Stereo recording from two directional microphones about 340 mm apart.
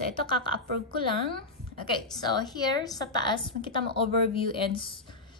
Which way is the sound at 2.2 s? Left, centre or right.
Centre.